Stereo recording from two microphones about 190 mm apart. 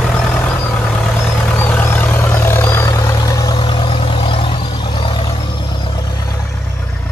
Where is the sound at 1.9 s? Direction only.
10° left (ahead or behind).